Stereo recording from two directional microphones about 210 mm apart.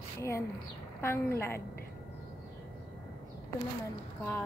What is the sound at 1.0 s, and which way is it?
Speech, 10° left (ahead or behind).